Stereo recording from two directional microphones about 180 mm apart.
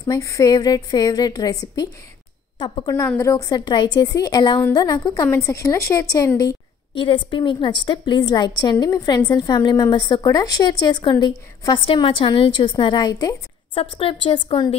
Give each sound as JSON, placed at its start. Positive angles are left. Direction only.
{"t": 0.0, "sound": "a woman's voice", "side_deg": 15}